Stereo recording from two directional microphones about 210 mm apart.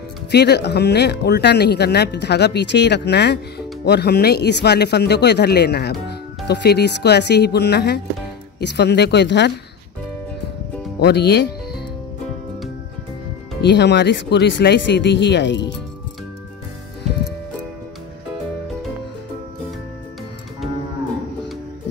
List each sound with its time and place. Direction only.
0.3 s speech: 50° left (ahead or behind)
11.0 s speech: 50° left (ahead or behind)
13.6 s speech: 55° left (ahead or behind)